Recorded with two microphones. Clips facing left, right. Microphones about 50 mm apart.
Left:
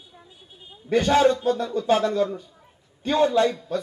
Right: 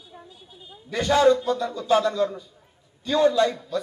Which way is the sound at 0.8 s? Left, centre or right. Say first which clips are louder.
Left 1 dB; left.